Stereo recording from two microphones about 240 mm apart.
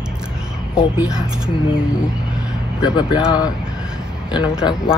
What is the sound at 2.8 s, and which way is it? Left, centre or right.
Speech, centre.